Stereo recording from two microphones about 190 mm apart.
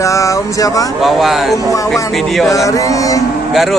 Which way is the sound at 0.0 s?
15° left (ahead or behind).